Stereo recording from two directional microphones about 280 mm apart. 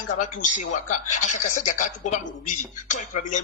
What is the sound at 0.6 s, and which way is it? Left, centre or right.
Speech, left.